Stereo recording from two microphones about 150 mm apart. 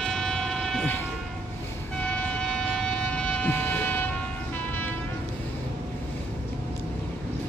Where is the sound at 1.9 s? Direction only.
10° left (ahead or behind).